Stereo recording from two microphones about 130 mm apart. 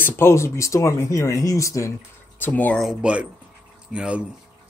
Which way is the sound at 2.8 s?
5° right (ahead or behind).